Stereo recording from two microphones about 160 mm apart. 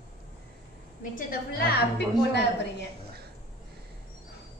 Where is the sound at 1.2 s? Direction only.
65° left (ahead or behind); by 2.8 s 90° left.